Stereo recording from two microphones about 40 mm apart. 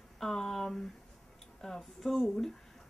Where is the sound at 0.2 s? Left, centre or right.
Centre.